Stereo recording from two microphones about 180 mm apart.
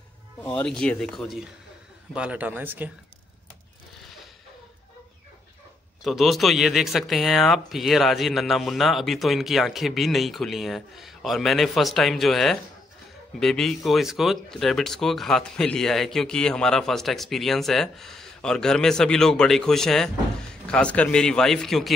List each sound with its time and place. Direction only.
0.5 s a man's voice: 5° left (ahead or behind); by 2.9 s 10° right (ahead or behind)
6.0 s speech: centre (ahead or behind)